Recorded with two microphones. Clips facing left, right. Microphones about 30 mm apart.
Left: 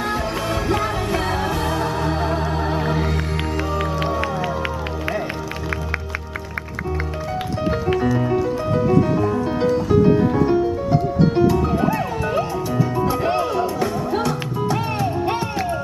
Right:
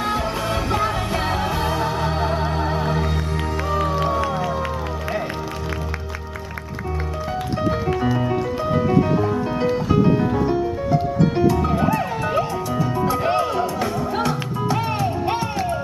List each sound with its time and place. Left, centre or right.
0.1 s music: centre
8.2 s music: centre
10.0 s music: centre